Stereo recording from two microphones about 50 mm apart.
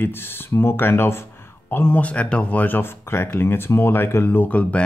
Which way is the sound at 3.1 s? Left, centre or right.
Left.